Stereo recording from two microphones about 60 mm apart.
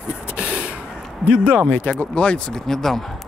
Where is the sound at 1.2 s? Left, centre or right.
Centre.